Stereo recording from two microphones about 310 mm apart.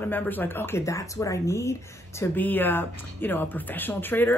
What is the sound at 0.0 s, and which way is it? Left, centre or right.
Speech, centre.